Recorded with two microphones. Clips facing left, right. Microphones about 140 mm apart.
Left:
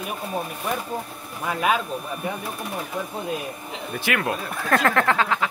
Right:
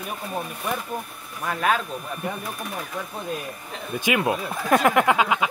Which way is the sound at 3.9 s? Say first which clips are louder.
Right 3 dB; 20° right (ahead or behind).